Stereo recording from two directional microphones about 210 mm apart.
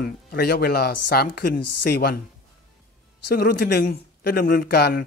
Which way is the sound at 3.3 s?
50° left (ahead or behind).